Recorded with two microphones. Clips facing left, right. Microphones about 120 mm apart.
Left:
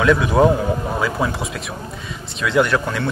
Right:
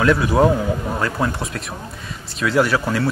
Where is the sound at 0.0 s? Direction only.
Centre (ahead or behind).